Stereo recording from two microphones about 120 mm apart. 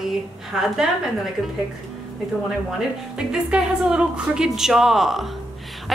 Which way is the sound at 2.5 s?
5° right (ahead or behind).